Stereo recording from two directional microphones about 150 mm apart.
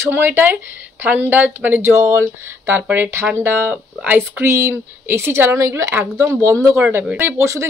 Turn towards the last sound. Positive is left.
turn(degrees=-20)  # may be behind; listen again after turning